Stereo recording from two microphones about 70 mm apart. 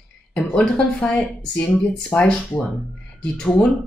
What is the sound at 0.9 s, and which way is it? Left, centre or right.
A woman's voice, left.